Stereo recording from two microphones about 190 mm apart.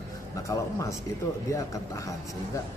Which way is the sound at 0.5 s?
15° left (ahead or behind).